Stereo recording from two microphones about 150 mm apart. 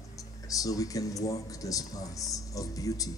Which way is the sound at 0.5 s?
25° left (ahead or behind).